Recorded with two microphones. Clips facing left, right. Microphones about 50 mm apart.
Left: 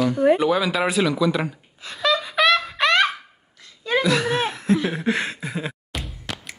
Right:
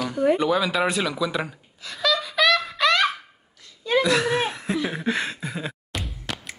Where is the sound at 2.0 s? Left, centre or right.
Left.